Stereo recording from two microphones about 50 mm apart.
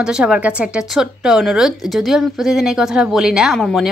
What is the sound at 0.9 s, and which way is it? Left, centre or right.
Speech, centre.